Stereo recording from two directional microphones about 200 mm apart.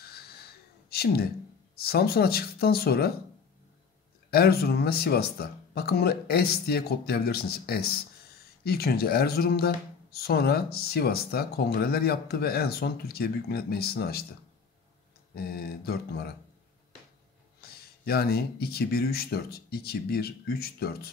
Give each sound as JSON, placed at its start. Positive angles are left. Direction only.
{"t": 0.8, "sound": "a sound", "side_deg": 50}
{"t": 1.8, "sound": "speech", "side_deg": 50}
{"t": 4.3, "sound": "speech", "side_deg": 50}
{"t": 15.3, "sound": "speech", "side_deg": 50}
{"t": 17.6, "sound": "speech", "side_deg": 50}